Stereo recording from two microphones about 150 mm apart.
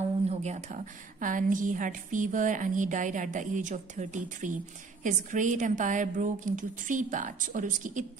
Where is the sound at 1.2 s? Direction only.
60° right (ahead or behind).